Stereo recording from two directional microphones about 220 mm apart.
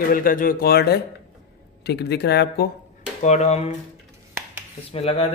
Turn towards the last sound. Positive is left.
turn(degrees=25)  # may be behind; listen again after turning